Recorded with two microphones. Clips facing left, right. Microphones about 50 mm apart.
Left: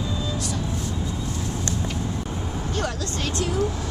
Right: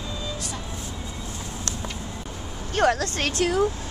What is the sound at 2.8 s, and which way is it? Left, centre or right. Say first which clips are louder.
Speech: right 9 dB; right.